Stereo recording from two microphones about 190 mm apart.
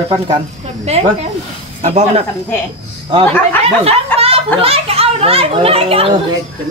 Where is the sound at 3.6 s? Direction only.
30° right (ahead or behind).